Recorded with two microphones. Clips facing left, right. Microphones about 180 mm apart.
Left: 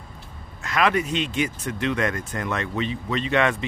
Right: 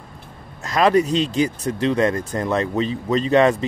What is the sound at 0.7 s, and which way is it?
Speech, 35° right (ahead or behind).